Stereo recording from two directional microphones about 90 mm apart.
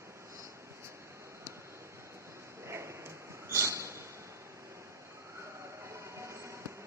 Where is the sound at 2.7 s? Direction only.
30° right (ahead or behind).